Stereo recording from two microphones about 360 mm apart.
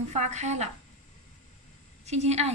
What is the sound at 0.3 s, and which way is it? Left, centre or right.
Speech, centre.